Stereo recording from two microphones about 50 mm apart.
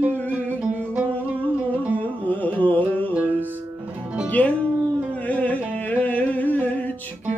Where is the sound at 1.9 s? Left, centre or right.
Left.